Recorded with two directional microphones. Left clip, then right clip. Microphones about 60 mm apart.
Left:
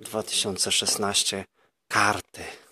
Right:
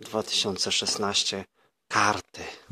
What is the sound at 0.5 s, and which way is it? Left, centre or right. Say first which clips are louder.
Speech: left 1 dB; centre.